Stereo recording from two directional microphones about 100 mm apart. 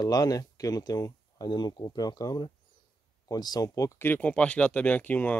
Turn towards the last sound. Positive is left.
turn(degrees=15)  # may be behind; listen again after turning